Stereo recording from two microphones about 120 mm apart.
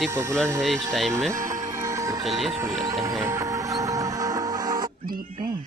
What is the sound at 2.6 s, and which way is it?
Music, 25° right (ahead or behind).